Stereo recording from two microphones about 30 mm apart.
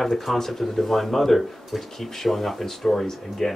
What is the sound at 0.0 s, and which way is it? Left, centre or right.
Speech, centre.